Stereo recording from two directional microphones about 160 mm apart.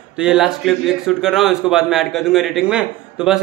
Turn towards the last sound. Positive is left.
turn(degrees=-5)  # may be behind; listen again after turning